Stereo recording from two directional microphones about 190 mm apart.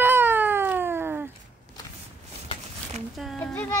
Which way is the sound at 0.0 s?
10° right (ahead or behind).